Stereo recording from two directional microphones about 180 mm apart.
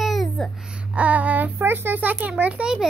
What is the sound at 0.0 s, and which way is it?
Babbling, centre (ahead or behind).